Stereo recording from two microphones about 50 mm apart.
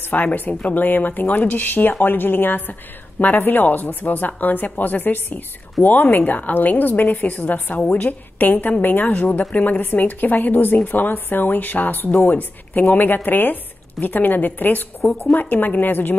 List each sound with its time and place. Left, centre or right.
0.1 s speech: left